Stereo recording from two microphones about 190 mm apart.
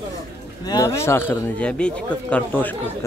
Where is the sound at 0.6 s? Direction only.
20° left (ahead or behind).